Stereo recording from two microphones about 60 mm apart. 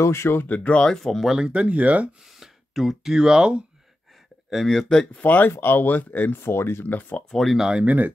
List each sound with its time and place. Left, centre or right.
0.0 s speech: left
0.5 s speech: left
0.8 s speech: centre
1.3 s speech: centre
2.4 s speech: centre
4.5 s speech: centre
5.2 s speech: left
7.2 s speech: centre
7.5 s speech: centre
7.8 s speech: right